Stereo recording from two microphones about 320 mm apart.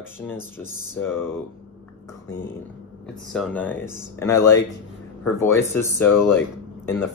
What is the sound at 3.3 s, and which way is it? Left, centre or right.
Speech, centre.